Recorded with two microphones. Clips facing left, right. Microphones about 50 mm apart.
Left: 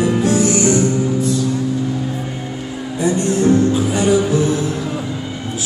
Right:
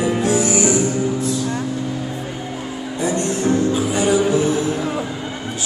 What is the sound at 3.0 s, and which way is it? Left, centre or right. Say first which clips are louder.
Music: left 4 dB; centre.